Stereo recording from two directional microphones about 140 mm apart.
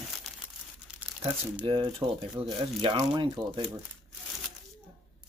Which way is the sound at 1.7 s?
40° right (ahead or behind).